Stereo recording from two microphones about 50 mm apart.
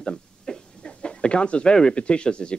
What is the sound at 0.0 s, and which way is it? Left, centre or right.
A man's voice, centre.